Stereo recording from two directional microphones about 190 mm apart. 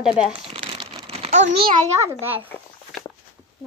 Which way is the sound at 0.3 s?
30° right (ahead or behind).